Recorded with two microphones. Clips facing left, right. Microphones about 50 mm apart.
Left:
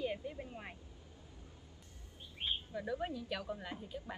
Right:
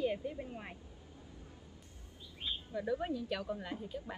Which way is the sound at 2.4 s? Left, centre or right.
Left.